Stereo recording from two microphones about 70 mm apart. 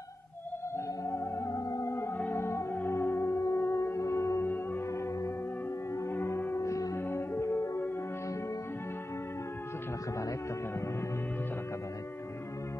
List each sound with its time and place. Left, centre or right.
1.0 s music: left
6.0 s music: left
7.0 s music: left